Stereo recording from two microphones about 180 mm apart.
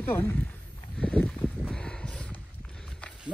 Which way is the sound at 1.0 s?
5° left (ahead or behind).